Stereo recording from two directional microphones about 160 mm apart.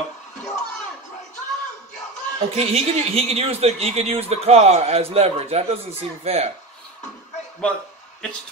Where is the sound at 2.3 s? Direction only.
40° right (ahead or behind).